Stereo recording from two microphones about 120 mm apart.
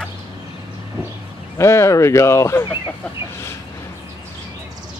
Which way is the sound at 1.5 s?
25° left (ahead or behind).